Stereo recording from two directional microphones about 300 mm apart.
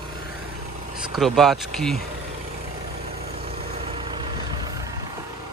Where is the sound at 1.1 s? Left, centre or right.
Centre.